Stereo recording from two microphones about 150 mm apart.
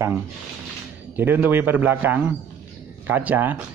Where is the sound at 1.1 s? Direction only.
10° right (ahead or behind).